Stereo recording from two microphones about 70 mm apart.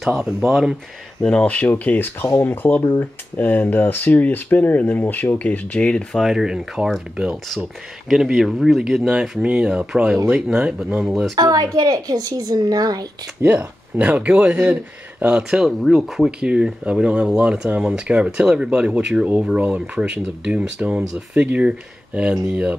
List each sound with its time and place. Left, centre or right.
0.0 s speech: centre
1.2 s speech: centre
6.1 s speech: centre
8.1 s speech: centre
11.3 s a woman's voice: right
13.4 s speech: right
15.2 s speech: centre